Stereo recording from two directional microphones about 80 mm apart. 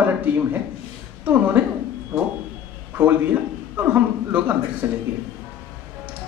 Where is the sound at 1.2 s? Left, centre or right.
Right.